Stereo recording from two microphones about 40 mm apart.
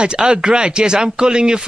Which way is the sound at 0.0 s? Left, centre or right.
Right.